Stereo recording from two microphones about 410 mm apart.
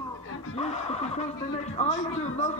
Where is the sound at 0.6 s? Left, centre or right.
Centre.